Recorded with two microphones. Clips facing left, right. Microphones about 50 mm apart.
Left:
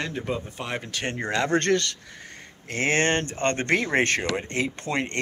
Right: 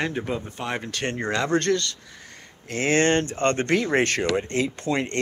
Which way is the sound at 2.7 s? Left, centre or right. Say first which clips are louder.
Right 2 dB; left.